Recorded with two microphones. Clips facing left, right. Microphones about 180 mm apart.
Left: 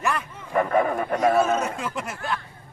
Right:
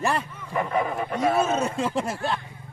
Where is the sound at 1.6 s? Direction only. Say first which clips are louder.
Right 4 dB; 30° right (ahead or behind).